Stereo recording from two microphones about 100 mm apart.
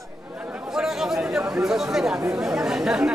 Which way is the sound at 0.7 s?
5° right (ahead or behind).